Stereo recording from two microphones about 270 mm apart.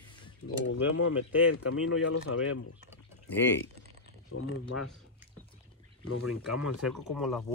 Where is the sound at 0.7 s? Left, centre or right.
Left.